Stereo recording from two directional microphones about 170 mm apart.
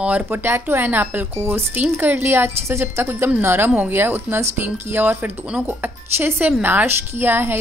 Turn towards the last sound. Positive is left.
turn(degrees=-15)  # may be behind; listen again after turning